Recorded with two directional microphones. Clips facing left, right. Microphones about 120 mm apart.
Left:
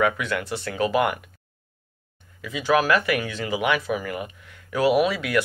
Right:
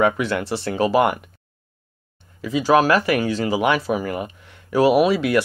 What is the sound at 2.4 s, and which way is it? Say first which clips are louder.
Speech: right 5 dB; 35° right (ahead or behind).